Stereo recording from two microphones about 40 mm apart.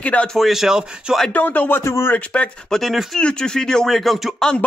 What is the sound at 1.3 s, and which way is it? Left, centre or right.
Speech, left.